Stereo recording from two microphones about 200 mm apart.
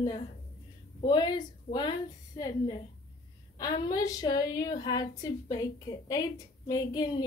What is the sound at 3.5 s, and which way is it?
A woman's voice, 20° left (ahead or behind).